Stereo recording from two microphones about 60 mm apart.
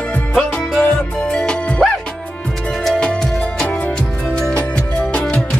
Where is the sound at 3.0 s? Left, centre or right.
Centre.